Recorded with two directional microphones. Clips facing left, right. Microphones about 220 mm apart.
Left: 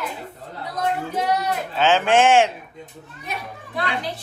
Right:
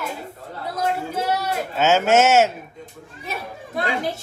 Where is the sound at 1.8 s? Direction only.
10° right (ahead or behind).